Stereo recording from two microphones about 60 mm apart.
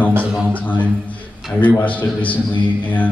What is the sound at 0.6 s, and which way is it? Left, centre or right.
A man's voice, left.